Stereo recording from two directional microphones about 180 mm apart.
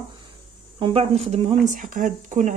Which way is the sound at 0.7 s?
30° right (ahead or behind).